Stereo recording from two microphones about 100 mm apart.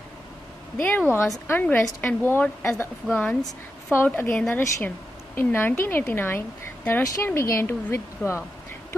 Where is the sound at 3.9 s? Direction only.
20° left (ahead or behind).